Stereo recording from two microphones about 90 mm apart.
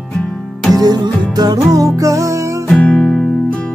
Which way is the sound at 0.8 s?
45° right (ahead or behind).